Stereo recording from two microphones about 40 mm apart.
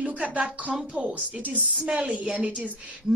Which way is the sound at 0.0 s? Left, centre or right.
Right.